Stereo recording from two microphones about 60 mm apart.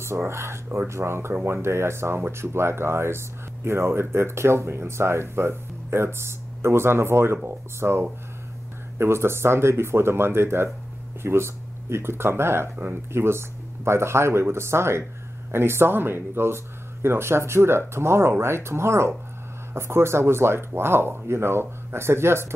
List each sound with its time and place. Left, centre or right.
0.0 s speech: right